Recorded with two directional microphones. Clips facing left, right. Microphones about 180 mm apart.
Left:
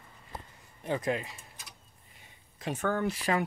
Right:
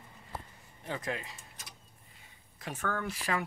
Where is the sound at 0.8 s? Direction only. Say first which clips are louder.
Left 6 dB; 15° left (ahead or behind).